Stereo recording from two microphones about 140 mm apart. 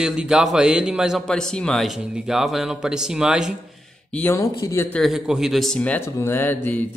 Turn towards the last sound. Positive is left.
turn(degrees=15)  # may be behind; listen again after turning